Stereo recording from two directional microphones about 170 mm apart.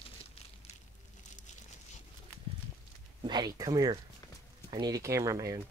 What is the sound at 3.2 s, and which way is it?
Speech, 25° right (ahead or behind).